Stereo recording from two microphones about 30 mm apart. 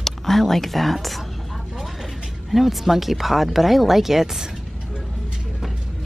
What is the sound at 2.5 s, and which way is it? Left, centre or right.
Speech, centre.